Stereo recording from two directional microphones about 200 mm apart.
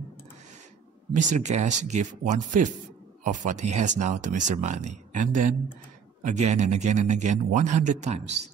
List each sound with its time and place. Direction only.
1.1 s speech: 35° right (ahead or behind)